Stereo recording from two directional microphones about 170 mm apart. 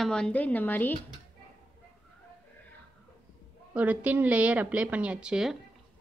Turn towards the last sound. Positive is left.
turn(degrees=-5)  # may be behind; listen again after turning